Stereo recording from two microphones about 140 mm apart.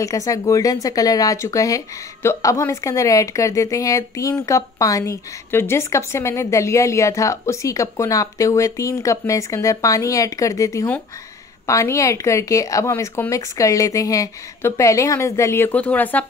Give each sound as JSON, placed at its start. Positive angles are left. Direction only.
{"t": 0.0, "sound": "a woman's voice", "side_deg": 25}